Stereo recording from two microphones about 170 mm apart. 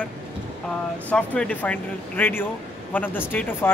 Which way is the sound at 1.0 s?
5° left (ahead or behind).